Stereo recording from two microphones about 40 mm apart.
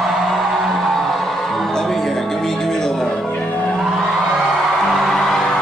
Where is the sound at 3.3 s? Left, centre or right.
Left.